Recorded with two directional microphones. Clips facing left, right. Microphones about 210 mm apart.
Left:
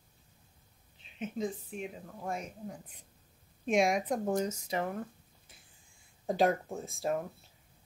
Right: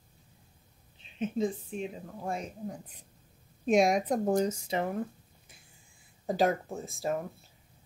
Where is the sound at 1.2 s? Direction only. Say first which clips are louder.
Right 5 dB; 25° right (ahead or behind).